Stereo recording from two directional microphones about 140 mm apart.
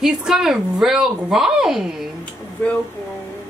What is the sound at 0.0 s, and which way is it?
A woman's voice, 5° right (ahead or behind).